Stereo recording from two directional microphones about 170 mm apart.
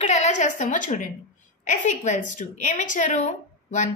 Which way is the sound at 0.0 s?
45° left (ahead or behind).